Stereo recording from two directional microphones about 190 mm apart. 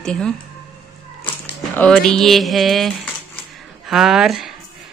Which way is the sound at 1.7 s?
5° left (ahead or behind).